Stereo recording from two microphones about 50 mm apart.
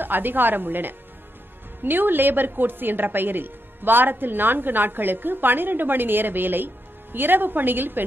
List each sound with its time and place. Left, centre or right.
0.0 s a woman's voice: right